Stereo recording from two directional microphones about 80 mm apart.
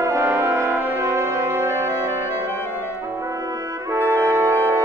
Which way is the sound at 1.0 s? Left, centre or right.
Right.